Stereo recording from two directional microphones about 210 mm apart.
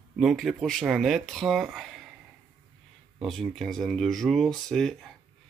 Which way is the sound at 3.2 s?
Centre (ahead or behind).